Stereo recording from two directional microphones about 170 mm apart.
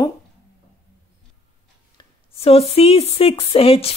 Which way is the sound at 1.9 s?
35° left (ahead or behind).